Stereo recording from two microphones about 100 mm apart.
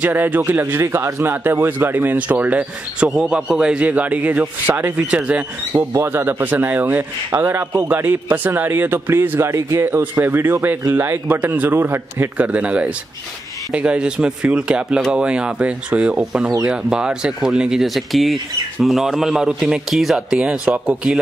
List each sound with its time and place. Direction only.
0.0 s a man's voice: 15° right (ahead or behind)
5.8 s a man's voice: 25° right (ahead or behind)